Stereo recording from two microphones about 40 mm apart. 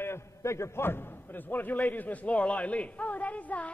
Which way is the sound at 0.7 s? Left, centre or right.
Left.